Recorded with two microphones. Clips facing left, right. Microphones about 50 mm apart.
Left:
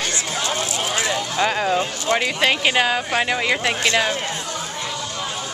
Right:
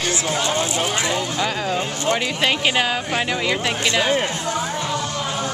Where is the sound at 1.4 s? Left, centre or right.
Centre.